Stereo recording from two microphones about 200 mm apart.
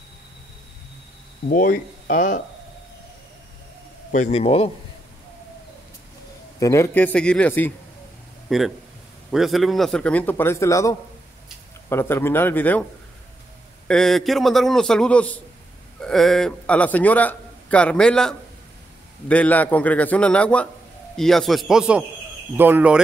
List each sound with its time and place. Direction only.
1.5 s speech: 45° left (ahead or behind)
4.1 s a man's voice: 35° left (ahead or behind)
6.6 s a man's voice: 15° left (ahead or behind)
13.8 s a man's voice: centre (ahead or behind)